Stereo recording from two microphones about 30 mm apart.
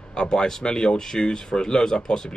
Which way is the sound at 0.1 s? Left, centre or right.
Left.